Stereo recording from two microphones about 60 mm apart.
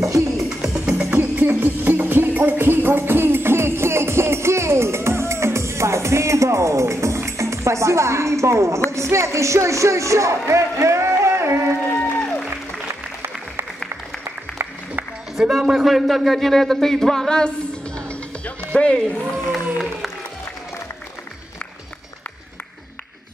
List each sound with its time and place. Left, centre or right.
0.0 s music: right
0.7 s music: right
8.9 s speech: right
11.9 s music: left
15.3 s a man's voice: centre
17.9 s music: centre
19.3 s a sound: centre